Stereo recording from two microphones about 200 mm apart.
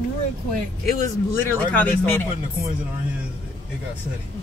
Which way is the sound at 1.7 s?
10° left (ahead or behind).